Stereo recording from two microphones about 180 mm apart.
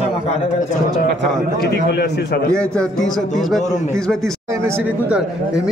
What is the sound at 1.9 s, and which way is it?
Speech, 65° left (ahead or behind).